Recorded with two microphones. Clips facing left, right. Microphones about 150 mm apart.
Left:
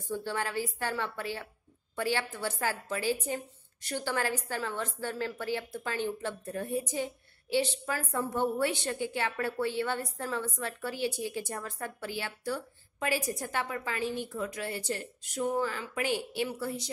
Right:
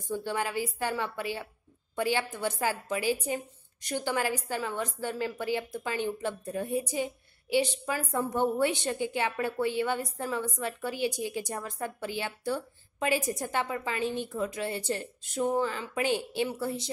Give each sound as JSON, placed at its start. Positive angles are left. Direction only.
{"t": 0.1, "sound": "a woman's voice", "side_deg": -15}